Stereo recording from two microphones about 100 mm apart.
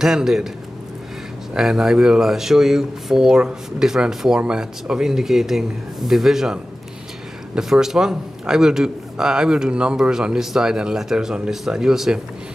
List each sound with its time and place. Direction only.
0.0 s speech: 5° right (ahead or behind)
1.5 s a man's voice: 5° right (ahead or behind)